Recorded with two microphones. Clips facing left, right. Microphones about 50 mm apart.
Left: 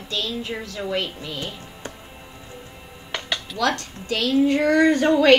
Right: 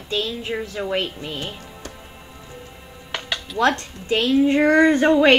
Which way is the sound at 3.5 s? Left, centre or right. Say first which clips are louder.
Right 5 dB; right.